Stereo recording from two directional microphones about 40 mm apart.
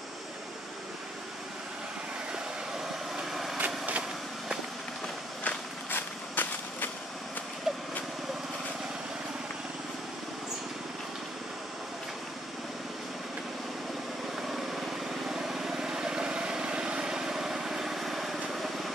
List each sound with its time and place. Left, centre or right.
3.2 s vehicle: centre
3.5 s vehicle: right
5.4 s walk: left
7.7 s vehicle: centre
14.5 s vehicle: centre